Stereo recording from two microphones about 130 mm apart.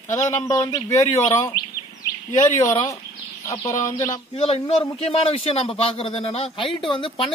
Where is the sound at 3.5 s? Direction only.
25° left (ahead or behind).